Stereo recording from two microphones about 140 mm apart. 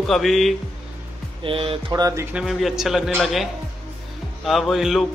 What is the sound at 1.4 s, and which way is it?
Speech, 40° right (ahead or behind).